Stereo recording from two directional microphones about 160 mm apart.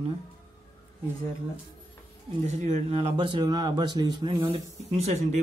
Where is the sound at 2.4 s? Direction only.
45° right (ahead or behind).